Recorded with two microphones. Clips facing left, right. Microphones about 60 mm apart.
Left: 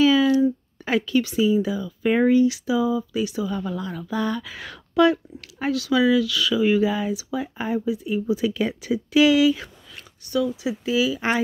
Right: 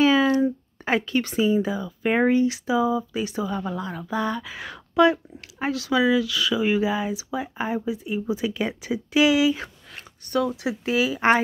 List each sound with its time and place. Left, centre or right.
0.0 s speech: right
9.6 s a sound: right
10.4 s speech: right